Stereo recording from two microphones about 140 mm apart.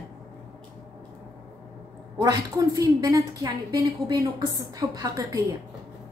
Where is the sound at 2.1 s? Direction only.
25° right (ahead or behind).